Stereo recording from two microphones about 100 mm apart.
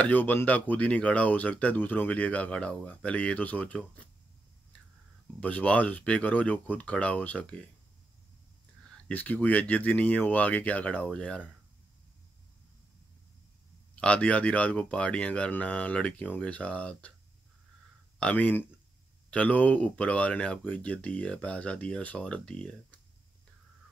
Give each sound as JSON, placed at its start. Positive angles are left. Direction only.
{"t": 0.0, "sound": "speech", "side_deg": 15}
{"t": 5.4, "sound": "speech", "side_deg": 15}
{"t": 9.1, "sound": "speech", "side_deg": 15}
{"t": 13.9, "sound": "speech", "side_deg": 10}
{"t": 18.2, "sound": "speech", "side_deg": 15}